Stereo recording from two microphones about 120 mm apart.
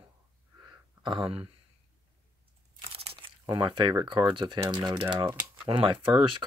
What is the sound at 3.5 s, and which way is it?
Speech, 40° right (ahead or behind).